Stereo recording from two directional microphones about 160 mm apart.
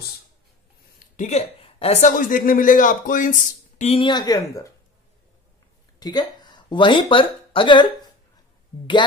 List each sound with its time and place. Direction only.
0.9 s a woman's voice: 50° left (ahead or behind)
4.0 s speech: 25° left (ahead or behind)
5.9 s speech: 25° left (ahead or behind)